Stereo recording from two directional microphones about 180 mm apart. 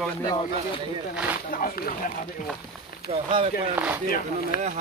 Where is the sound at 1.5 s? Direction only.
50° left (ahead or behind).